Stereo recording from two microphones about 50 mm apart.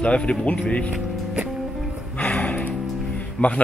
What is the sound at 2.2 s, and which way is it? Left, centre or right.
Music, left.